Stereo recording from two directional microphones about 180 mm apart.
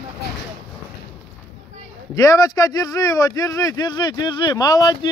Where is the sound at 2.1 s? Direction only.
20° left (ahead or behind).